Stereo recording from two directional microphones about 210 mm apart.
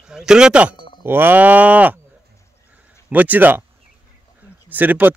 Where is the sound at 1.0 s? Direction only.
10° right (ahead or behind).